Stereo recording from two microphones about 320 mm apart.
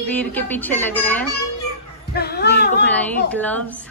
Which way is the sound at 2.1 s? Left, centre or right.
Left.